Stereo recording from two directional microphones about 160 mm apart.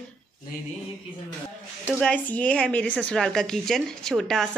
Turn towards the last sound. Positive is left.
turn(degrees=5)  # may be behind; listen again after turning